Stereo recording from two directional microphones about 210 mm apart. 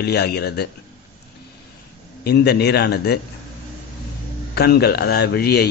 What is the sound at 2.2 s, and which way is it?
Speech, 50° left (ahead or behind).